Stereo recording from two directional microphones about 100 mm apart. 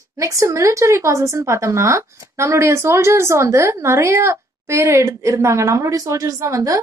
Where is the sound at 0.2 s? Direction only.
30° right (ahead or behind).